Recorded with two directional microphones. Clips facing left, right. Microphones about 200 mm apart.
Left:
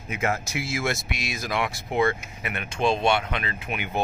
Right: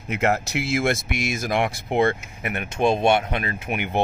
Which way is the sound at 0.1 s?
65° right (ahead or behind).